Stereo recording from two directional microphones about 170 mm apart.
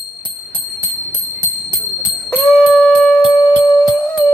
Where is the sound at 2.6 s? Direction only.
5° left (ahead or behind).